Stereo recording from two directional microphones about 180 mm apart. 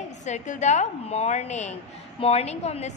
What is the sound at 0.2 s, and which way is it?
A woman's voice, 40° left (ahead or behind).